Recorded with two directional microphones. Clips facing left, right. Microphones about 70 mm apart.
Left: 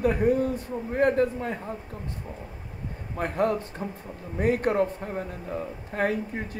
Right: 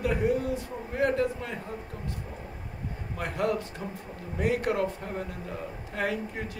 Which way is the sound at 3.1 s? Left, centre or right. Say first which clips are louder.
Left 4 dB; left.